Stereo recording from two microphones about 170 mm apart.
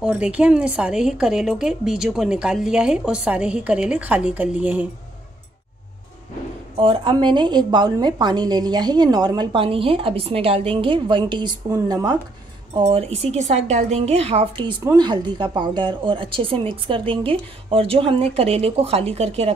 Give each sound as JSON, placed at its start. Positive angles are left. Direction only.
{"t": 0.0, "sound": "a woman's voice", "side_deg": -5}
{"t": 6.8, "sound": "a woman's voice", "side_deg": -30}